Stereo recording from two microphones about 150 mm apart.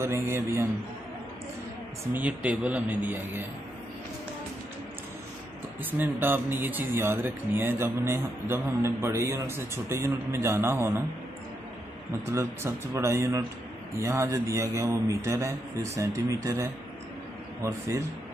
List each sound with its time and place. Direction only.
0.0 s speech: 15° right (ahead or behind)
2.1 s speech: 10° right (ahead or behind)
5.9 s speech: 15° right (ahead or behind)
12.3 s a man's voice: 20° right (ahead or behind)